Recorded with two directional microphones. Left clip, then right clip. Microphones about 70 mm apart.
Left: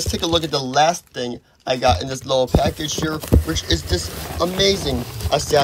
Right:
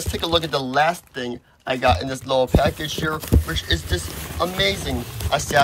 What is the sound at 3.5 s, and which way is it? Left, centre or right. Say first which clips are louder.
Speech: left 2 dB; left.